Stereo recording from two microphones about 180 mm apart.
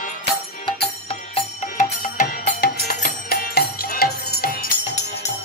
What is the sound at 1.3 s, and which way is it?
Music, 40° left (ahead or behind).